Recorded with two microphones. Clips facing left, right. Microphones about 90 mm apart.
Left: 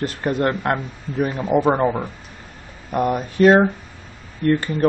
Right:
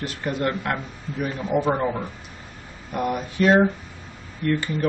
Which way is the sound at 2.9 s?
40° left (ahead or behind).